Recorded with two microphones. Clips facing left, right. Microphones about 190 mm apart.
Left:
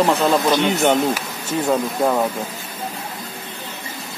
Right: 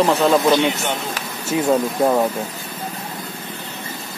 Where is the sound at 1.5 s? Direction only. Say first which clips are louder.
Right 2 dB; 10° right (ahead or behind).